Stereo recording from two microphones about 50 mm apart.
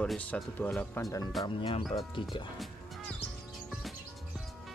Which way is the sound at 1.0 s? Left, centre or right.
Left.